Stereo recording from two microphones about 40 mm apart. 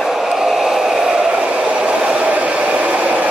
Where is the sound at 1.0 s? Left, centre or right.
Right.